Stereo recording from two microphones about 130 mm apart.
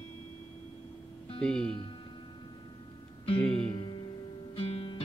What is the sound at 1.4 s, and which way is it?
Speech, 5° left (ahead or behind).